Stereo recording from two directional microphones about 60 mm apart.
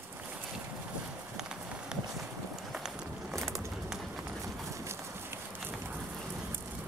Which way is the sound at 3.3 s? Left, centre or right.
Centre.